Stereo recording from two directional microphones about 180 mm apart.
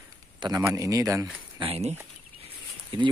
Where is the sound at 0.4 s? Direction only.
20° right (ahead or behind).